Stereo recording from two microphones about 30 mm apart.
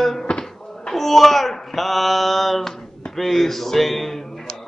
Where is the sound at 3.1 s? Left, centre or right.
Centre.